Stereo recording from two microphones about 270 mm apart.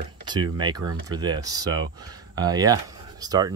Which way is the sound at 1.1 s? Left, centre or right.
Centre.